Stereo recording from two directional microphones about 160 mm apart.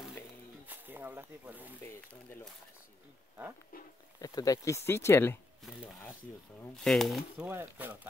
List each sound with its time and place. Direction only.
0.7 s speech: 10° right (ahead or behind)
3.7 s speech: 65° left (ahead or behind)
4.2 s speech: 20° left (ahead or behind)
5.6 s speech: centre (ahead or behind)
7.4 s speech: 10° right (ahead or behind)